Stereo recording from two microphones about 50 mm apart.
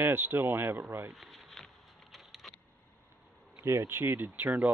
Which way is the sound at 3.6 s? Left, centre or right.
Right.